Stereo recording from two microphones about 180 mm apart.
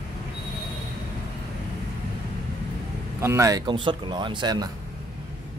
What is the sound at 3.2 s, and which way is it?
A man's voice, 15° right (ahead or behind).